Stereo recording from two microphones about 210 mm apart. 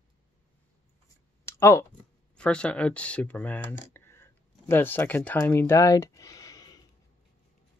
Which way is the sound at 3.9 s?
10° left (ahead or behind).